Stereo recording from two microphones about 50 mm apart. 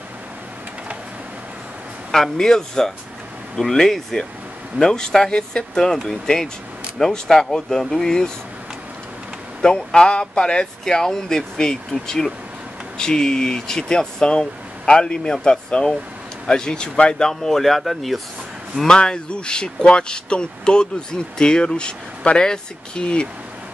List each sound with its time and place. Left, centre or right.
2.0 s speech: centre
9.6 s speech: centre
18.9 s speech: centre